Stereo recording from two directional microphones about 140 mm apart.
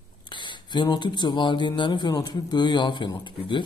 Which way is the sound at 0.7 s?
35° left (ahead or behind).